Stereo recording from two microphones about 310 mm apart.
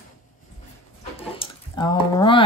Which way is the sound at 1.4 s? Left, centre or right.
Centre.